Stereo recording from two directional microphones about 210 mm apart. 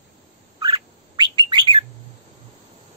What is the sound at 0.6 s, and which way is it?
Bird, 25° right (ahead or behind).